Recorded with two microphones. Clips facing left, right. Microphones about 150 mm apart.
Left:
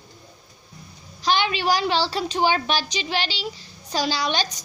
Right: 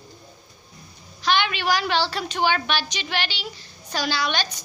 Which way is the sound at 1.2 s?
35° left (ahead or behind).